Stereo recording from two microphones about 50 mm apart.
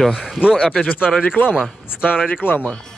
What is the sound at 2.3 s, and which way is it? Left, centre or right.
Speech, left.